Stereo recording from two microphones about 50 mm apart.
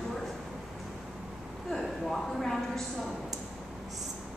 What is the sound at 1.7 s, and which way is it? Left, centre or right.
Speech, centre.